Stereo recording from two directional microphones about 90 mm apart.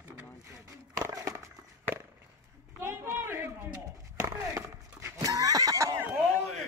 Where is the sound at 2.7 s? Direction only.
25° right (ahead or behind).